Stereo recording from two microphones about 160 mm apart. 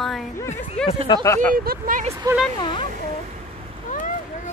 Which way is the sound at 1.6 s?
60° right (ahead or behind).